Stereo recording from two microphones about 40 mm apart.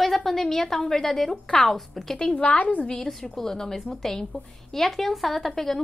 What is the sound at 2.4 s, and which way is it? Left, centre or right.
Speech, left.